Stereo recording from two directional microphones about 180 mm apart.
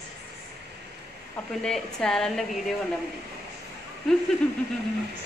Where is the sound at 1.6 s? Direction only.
5° left (ahead or behind).